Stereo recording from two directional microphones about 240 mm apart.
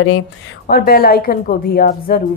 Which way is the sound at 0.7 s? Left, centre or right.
Left.